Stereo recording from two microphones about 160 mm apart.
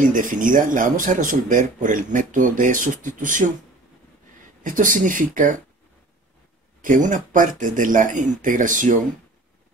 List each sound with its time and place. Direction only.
0.0 s speech: 55° right (ahead or behind)
4.6 s speech: 55° right (ahead or behind)
6.8 s speech: 55° right (ahead or behind)